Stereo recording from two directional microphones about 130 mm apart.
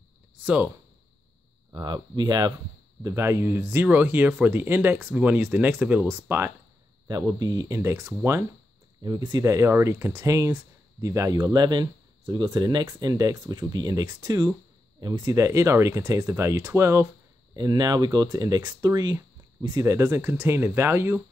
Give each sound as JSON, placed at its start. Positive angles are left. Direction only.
{"t": 0.4, "sound": "a sound", "side_deg": -10}
{"t": 1.7, "sound": "speech", "side_deg": -35}
{"t": 7.1, "sound": "speech", "side_deg": -30}
{"t": 9.0, "sound": "speech", "side_deg": -35}
{"t": 17.6, "sound": "speech", "side_deg": -30}